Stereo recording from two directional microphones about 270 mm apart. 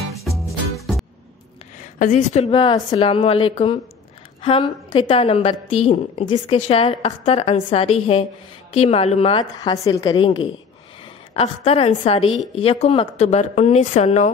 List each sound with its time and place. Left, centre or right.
0.7 s music: centre
2.0 s a woman's voice: left